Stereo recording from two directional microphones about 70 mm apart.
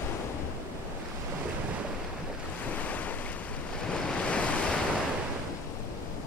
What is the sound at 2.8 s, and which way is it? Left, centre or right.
Waves, left.